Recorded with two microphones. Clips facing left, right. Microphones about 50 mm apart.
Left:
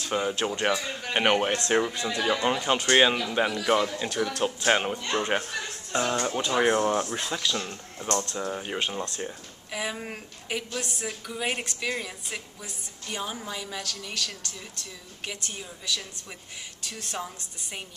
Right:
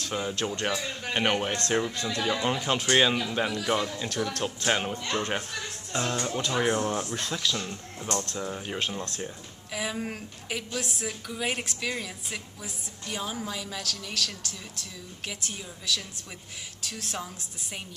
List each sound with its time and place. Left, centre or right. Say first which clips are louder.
0.1 s speech: left 4 dB; centre
4.6 s speech: left 3 dB; centre
6.6 s speech: left 5 dB; left
7.2 s a woman's voice: left 1 dB; centre